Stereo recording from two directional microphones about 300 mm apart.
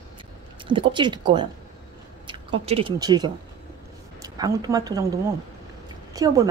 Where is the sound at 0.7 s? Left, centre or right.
Centre.